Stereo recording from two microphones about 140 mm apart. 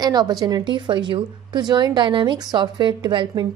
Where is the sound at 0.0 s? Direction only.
30° right (ahead or behind).